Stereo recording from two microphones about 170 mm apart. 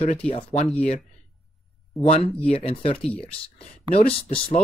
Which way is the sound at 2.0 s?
35° left (ahead or behind).